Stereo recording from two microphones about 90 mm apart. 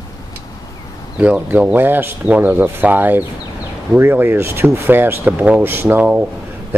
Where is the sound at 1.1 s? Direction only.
15° right (ahead or behind).